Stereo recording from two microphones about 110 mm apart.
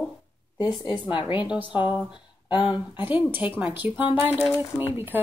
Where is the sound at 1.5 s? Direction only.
10° right (ahead or behind).